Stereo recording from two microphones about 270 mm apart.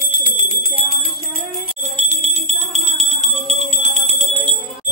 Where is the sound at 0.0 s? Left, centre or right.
Right.